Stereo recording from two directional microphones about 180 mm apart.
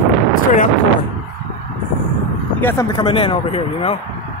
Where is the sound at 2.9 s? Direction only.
30° left (ahead or behind).